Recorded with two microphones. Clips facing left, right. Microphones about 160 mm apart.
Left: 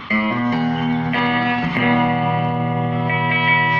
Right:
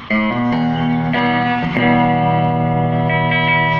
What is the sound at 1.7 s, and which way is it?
Music, 30° right (ahead or behind).